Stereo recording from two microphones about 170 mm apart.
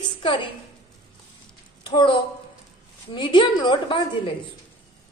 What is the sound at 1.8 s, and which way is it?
A woman's voice, 30° left (ahead or behind).